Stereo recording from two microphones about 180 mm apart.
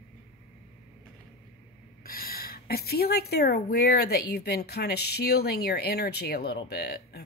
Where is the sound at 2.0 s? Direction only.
55° left (ahead or behind).